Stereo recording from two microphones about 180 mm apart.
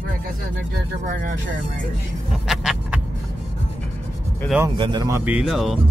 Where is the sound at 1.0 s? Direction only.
50° right (ahead or behind).